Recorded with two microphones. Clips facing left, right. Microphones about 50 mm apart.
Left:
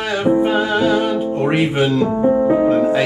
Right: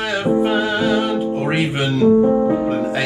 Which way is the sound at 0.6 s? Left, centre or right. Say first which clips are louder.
Left 2 dB; left.